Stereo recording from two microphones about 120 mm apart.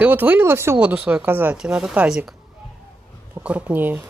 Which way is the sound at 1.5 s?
5° right (ahead or behind).